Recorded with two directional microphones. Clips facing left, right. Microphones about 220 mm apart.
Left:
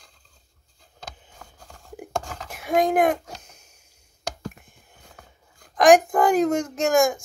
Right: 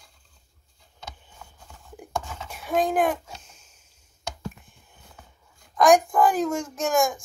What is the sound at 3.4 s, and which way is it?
Sniff, 60° left (ahead or behind).